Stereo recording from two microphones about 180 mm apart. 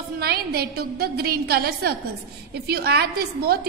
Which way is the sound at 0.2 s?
60° right (ahead or behind).